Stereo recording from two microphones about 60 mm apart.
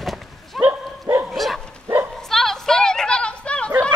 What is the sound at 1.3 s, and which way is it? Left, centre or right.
Bow-wow, centre.